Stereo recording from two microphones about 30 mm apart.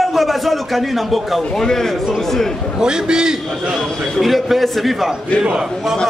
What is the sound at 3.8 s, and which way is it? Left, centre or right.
A man's voice, centre.